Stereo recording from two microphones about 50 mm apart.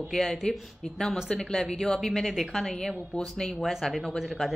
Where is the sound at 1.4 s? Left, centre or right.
Centre.